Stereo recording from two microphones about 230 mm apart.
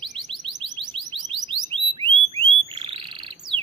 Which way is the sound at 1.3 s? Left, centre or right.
Right.